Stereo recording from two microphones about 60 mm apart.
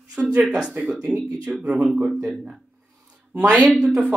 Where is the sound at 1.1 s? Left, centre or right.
Centre.